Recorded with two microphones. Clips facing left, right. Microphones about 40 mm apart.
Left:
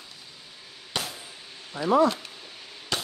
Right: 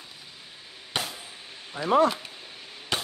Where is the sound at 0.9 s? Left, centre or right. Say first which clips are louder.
Right 1 dB; right.